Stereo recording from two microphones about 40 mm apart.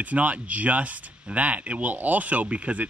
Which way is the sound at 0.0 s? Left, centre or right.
Right.